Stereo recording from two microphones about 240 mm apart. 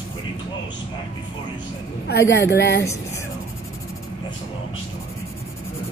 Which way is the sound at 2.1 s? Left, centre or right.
Left.